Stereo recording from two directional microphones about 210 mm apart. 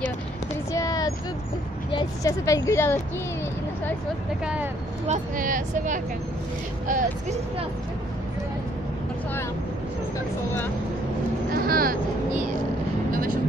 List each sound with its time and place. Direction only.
0.7 s a sound: 15° left (ahead or behind)
1.9 s speech: 20° left (ahead or behind)
5.0 s speech: 35° right (ahead or behind)
11.5 s speech: 45° right (ahead or behind)
13.1 s vehicle: 40° right (ahead or behind)